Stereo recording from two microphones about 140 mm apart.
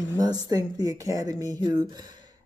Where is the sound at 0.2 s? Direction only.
25° right (ahead or behind).